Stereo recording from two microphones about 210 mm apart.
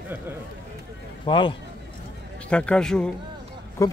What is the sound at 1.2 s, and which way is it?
Speech, 20° left (ahead or behind).